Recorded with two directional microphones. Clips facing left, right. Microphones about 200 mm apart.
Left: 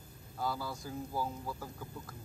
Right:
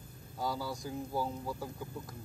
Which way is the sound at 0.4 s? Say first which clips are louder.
Right 1 dB; 15° right (ahead or behind).